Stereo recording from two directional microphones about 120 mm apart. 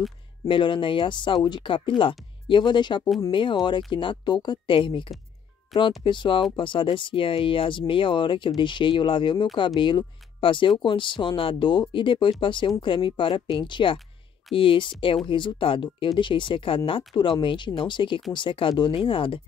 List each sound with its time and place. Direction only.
0.5 s speech: 45° left (ahead or behind)
5.7 s speech: centre (ahead or behind)
6.0 s speech: 40° left (ahead or behind)